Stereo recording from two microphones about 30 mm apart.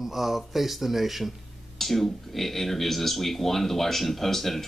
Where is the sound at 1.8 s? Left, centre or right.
Centre.